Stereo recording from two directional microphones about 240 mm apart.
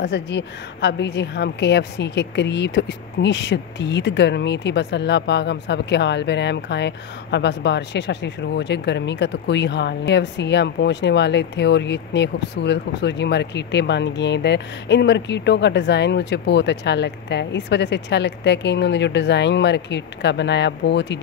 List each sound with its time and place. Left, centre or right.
0.0 s a woman's voice: left